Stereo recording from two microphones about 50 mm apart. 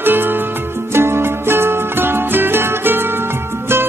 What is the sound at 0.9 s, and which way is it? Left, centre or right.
Music, right.